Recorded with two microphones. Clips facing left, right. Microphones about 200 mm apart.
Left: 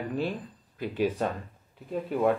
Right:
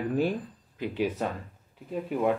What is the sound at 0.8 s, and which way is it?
Speech, 10° right (ahead or behind).